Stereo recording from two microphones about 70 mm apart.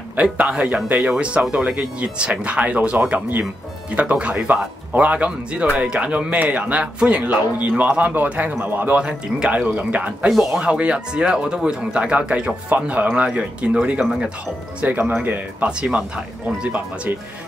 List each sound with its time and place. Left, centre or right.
0.1 s a man's voice: centre
8.9 s a man's voice: centre
14.8 s speech: centre